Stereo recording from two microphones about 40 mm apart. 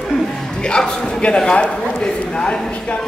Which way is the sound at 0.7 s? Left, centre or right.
Left.